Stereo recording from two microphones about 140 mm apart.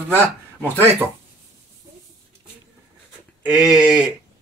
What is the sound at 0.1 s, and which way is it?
Speech, 15° right (ahead or behind).